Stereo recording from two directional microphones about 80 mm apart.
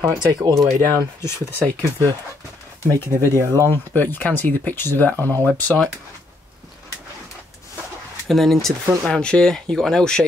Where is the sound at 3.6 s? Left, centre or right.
Left.